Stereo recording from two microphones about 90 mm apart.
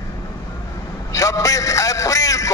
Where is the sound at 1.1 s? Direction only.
35° left (ahead or behind).